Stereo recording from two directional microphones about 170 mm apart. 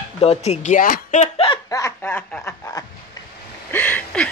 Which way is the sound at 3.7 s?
10° left (ahead or behind).